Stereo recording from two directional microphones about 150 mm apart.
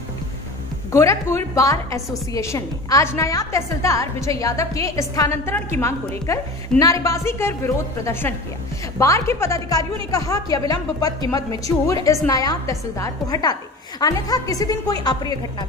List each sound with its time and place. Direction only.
0.9 s a woman's voice: 20° left (ahead or behind)